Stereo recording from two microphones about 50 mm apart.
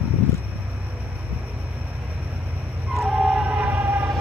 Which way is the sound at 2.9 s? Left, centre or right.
Centre.